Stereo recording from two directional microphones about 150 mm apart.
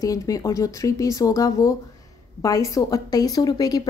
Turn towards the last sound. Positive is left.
turn(degrees=25)  # may be behind; listen again after turning